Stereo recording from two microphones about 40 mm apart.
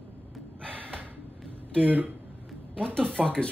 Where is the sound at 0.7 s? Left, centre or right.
Right.